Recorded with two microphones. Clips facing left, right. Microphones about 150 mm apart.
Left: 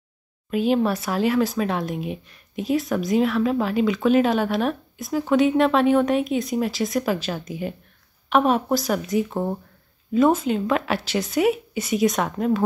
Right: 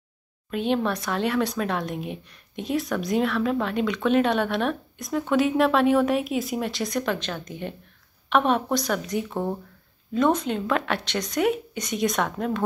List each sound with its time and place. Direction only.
0.5 s speech: 5° left (ahead or behind)